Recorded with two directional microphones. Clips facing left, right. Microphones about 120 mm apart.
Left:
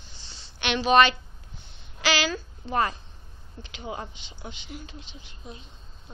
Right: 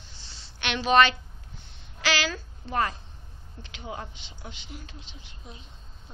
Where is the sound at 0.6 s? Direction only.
10° left (ahead or behind).